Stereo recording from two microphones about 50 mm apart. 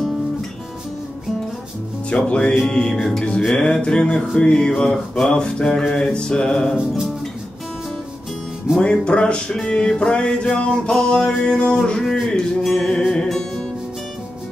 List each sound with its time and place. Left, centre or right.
2.0 s music: left
4.9 s a sound: centre
5.3 s music: centre
8.7 s music: centre
11.7 s music: centre
12.7 s a sound: centre
13.1 s music: centre